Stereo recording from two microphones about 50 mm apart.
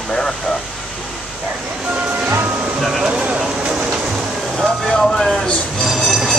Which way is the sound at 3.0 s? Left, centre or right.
Centre.